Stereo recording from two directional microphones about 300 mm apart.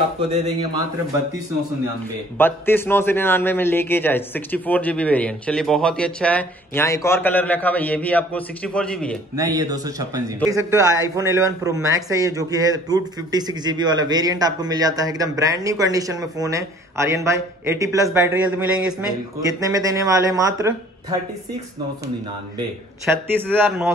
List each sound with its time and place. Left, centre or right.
0.3 s speech: right
2.3 s a man's voice: centre
9.4 s speech: centre
23.3 s speech: centre